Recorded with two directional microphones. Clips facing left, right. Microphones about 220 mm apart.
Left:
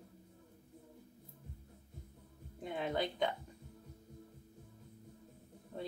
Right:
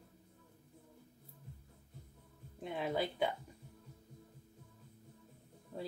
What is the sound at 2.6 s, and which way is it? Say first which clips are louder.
Speech: even; centre (ahead or behind).